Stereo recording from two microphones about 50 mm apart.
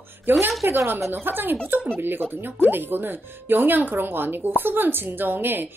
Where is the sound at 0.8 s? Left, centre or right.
Right.